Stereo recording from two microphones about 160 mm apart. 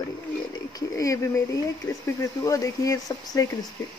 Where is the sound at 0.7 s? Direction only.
20° left (ahead or behind).